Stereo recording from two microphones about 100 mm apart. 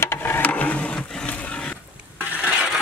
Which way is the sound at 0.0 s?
25° left (ahead or behind).